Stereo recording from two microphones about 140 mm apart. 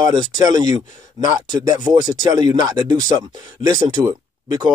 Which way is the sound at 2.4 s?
25° right (ahead or behind).